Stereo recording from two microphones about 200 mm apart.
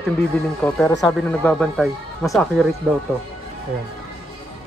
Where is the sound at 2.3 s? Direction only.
Centre (ahead or behind).